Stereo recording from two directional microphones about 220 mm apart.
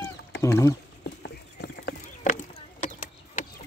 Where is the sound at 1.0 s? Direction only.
50° left (ahead or behind).